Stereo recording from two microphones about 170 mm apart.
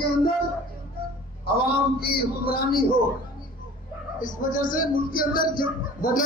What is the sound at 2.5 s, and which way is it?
Speech, 60° left (ahead or behind).